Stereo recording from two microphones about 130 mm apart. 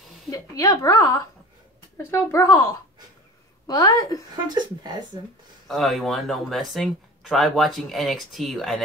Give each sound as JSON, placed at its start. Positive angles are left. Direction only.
{"t": 0.3, "sound": "a woman's voice", "side_deg": 25}
{"t": 4.5, "sound": "speech", "side_deg": -35}
{"t": 5.7, "sound": "speech", "side_deg": 0}